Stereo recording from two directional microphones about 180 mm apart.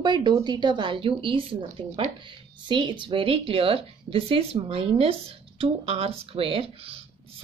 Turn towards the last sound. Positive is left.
turn(degrees=-30)  # may be behind; listen again after turning